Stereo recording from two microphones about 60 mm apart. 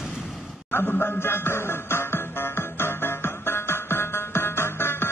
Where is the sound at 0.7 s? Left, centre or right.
Left.